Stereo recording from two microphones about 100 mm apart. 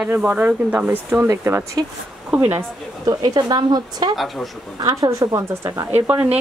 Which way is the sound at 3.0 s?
40° right (ahead or behind).